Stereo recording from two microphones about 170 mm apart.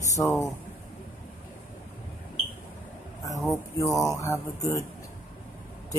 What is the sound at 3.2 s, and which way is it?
Speech, 15° left (ahead or behind).